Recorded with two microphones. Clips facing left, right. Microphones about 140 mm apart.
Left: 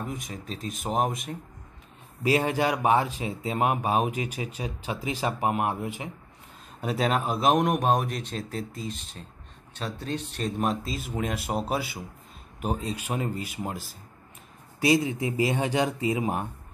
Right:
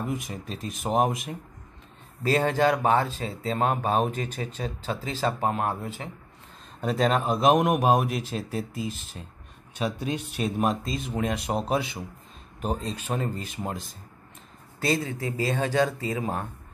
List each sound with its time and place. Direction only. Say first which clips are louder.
0.1 s a man's voice: right 3 dB; centre (ahead or behind)
2.2 s a man's voice: right 2 dB; 10° left (ahead or behind)